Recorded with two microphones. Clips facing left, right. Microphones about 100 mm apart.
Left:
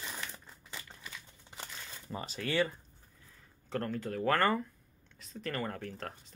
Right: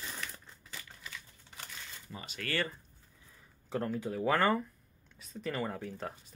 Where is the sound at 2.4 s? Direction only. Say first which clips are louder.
Left 4 dB; 20° left (ahead or behind).